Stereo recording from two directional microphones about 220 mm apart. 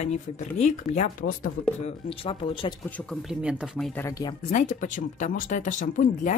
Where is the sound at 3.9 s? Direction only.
15° left (ahead or behind).